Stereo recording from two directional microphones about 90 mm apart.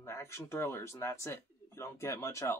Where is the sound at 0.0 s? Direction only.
30° left (ahead or behind).